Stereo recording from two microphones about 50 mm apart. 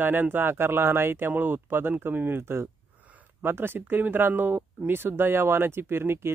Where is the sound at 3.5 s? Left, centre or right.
Right.